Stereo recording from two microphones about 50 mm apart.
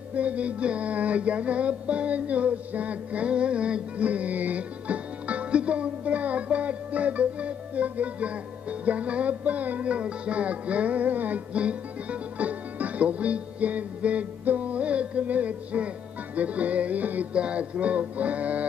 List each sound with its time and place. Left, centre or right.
0.1 s music: right
17.3 s music: right